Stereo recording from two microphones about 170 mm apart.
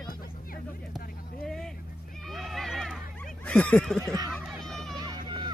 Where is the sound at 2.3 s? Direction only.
Centre (ahead or behind).